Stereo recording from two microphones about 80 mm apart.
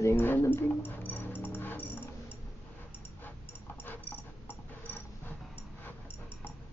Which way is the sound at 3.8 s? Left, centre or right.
Left.